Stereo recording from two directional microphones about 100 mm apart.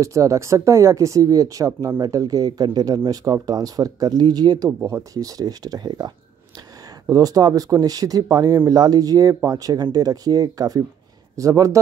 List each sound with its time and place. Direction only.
0.0 s speech: 30° right (ahead or behind)
4.8 s speech: 30° right (ahead or behind)